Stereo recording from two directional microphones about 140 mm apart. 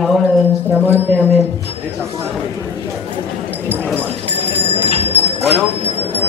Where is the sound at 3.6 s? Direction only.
15° right (ahead or behind).